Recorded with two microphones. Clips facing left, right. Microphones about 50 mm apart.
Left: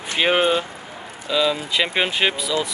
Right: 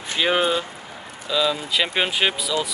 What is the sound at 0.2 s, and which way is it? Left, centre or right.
Speech, left.